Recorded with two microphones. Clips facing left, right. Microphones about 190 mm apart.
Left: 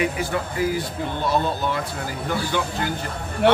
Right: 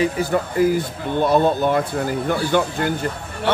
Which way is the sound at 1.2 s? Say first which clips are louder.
Right 7 dB; 55° right (ahead or behind).